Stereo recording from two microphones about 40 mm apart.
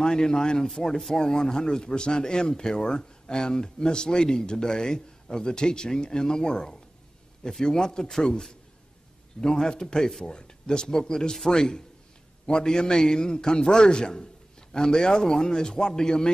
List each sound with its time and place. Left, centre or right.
0.0 s a man's voice: centre